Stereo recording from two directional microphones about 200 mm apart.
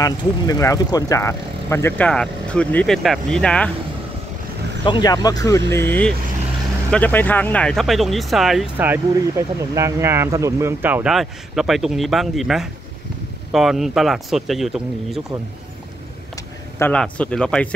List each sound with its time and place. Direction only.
0.0 s speech: 15° left (ahead or behind)
4.8 s speech: 20° left (ahead or behind); by 15.2 s centre (ahead or behind)
16.7 s speech: 10° left (ahead or behind)